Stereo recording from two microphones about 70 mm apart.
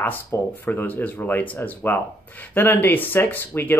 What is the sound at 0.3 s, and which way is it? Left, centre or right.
Speech, left.